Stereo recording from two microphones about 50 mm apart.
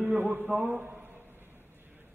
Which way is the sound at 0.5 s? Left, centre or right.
Right.